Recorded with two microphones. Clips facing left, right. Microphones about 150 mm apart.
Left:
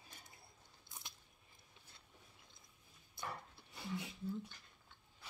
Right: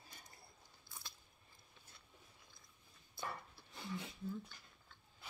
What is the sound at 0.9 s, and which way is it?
Biting, 20° left (ahead or behind).